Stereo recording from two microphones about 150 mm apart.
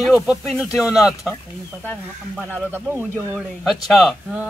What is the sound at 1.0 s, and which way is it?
Speech, 20° left (ahead or behind).